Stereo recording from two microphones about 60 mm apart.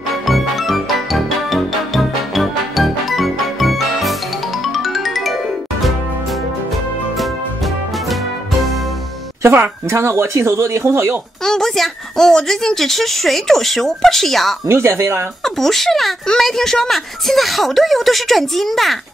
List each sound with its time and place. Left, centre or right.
0.3 s music: centre
8.1 s music: centre
9.8 s speech: right
11.4 s speech: centre
14.7 s speech: right
15.4 s speech: centre